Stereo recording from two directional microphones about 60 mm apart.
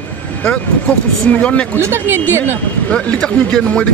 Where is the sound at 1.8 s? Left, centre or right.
Right.